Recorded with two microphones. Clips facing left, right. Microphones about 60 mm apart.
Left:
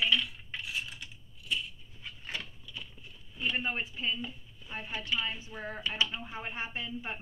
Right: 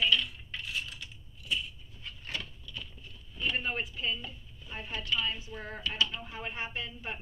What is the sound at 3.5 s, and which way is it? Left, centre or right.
Speech, left.